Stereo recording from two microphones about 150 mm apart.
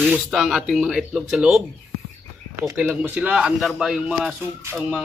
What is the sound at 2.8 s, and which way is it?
A man's voice, 5° right (ahead or behind).